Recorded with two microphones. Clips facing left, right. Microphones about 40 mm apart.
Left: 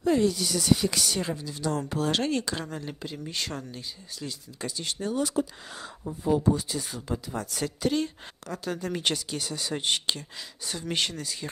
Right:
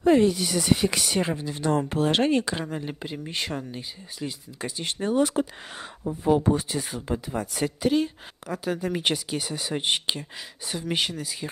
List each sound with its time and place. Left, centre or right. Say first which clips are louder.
0.0 s speech: right 4 dB; right
7.3 s speech: right 4 dB; centre